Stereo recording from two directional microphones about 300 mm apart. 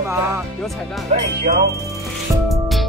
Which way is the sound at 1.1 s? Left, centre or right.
Right.